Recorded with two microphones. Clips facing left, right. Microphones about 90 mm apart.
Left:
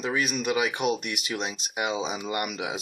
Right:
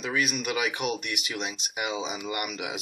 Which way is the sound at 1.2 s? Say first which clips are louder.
Left 4 dB; 40° left (ahead or behind).